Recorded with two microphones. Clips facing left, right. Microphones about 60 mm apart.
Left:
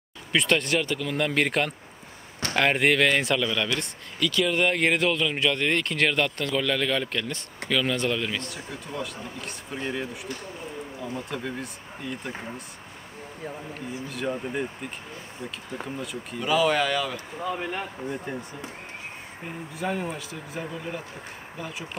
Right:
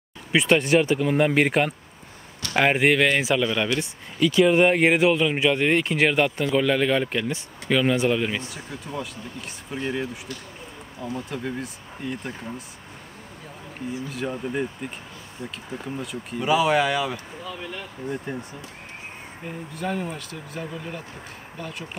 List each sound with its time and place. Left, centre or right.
0.3 s speech: centre
8.6 s speech: centre
11.3 s speech: centre
14.1 s speech: centre
16.4 s speech: centre
17.4 s speech: left
18.0 s speech: centre
19.4 s speech: centre